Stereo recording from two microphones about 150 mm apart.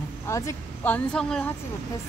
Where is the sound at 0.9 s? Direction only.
5° left (ahead or behind).